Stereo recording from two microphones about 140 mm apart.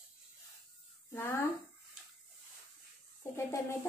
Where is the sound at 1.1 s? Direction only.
20° left (ahead or behind).